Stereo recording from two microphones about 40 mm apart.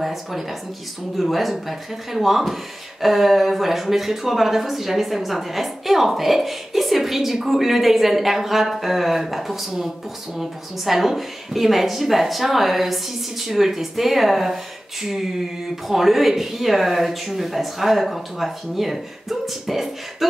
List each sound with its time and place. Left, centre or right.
0.0 s speech: centre
10.9 s speech: centre